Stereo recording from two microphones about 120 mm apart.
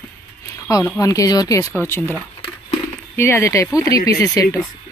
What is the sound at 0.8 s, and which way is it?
Speech, 25° left (ahead or behind).